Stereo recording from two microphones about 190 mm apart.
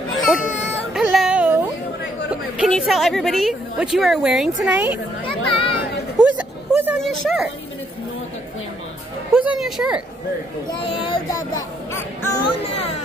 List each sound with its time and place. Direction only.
0.1 s baby cry: centre (ahead or behind)
0.9 s music: centre (ahead or behind)
2.5 s a woman's voice: 5° right (ahead or behind)
5.2 s chatter: 25° left (ahead or behind)
6.2 s a sound: 5° right (ahead or behind)
9.3 s speech: 5° right (ahead or behind)
11.1 s speech: 20° left (ahead or behind)